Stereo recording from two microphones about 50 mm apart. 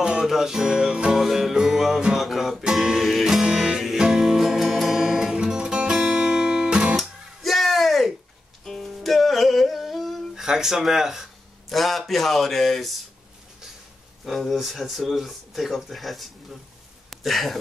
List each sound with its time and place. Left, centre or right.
0.0 s music: centre
5.3 s music: centre
6.0 s guitar: centre
7.0 s music: centre
10.3 s speech: centre
14.2 s speech: centre